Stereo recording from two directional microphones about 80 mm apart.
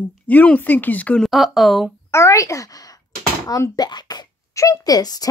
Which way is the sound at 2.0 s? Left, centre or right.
Left.